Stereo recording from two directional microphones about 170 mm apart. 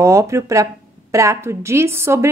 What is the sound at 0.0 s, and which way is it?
A woman's voice, 15° right (ahead or behind).